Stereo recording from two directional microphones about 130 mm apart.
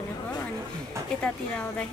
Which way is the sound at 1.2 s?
10° left (ahead or behind).